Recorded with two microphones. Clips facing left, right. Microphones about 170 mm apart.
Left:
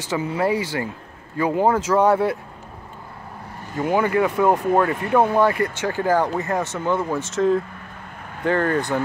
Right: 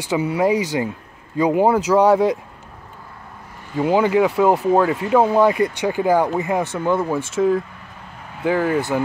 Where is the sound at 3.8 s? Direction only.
15° right (ahead or behind).